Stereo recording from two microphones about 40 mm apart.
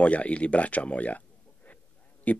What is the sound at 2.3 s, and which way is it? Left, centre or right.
Speech, left.